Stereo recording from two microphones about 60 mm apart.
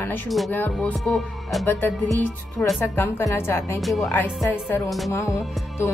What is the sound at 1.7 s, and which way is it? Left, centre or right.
Speech, left.